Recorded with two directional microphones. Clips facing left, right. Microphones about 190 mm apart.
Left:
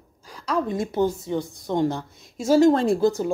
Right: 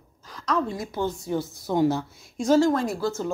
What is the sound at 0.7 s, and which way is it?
Speech, 25° left (ahead or behind).